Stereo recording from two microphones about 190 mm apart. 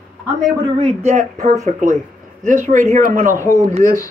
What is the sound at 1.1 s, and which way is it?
Speech, 40° right (ahead or behind).